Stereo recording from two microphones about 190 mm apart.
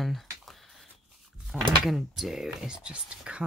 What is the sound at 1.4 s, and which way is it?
Speech, centre (ahead or behind).